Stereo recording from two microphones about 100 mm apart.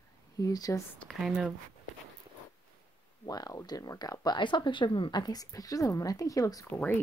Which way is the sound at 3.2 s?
40° left (ahead or behind).